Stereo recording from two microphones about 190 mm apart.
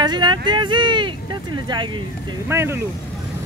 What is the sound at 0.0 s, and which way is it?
Vehicle, 25° right (ahead or behind).